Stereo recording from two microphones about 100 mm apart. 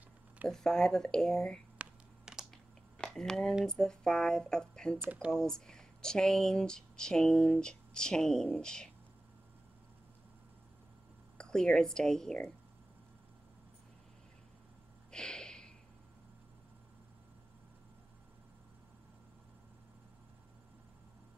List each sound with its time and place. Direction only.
0.5 s speech: 5° left (ahead or behind)
1.8 s computer keyboard: 5° right (ahead or behind)
3.0 s speech: 5° left (ahead or behind)
5.0 s speech: 15° right (ahead or behind)
5.3 s speech: 5° left (ahead or behind)
11.3 s speech: 5° left (ahead or behind)
15.0 s a sound: 10° left (ahead or behind)